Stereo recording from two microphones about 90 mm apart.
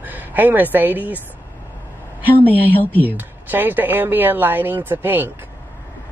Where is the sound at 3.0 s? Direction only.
20° right (ahead or behind).